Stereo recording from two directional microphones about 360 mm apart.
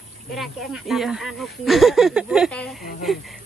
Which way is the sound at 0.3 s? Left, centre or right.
Centre.